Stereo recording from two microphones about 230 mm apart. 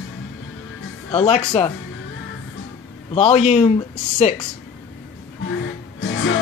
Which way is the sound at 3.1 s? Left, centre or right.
Left.